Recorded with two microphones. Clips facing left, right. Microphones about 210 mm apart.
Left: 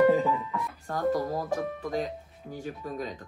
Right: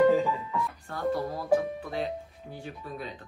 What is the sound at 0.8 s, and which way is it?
Music, 40° left (ahead or behind).